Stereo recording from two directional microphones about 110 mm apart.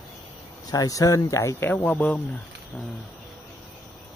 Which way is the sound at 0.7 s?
35° left (ahead or behind).